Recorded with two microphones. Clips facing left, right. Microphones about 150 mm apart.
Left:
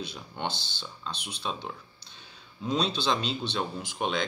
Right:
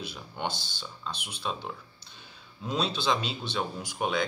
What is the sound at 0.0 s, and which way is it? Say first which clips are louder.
Speech: even; 10° right (ahead or behind).